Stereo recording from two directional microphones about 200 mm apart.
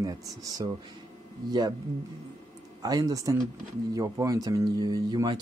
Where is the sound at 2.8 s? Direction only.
20° right (ahead or behind).